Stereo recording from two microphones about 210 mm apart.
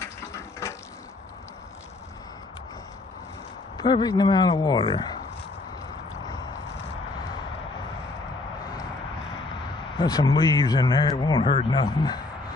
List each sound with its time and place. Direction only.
3.7 s a man's voice: 20° left (ahead or behind)
9.9 s a man's voice: 20° left (ahead or behind)